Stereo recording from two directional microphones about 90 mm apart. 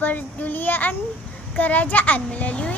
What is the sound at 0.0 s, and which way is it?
A child's voice, 20° left (ahead or behind).